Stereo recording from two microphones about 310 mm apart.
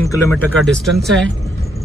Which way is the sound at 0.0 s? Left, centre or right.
Centre.